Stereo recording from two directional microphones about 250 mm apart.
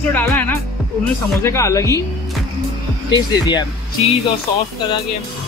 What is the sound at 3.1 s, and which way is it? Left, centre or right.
Speech, centre.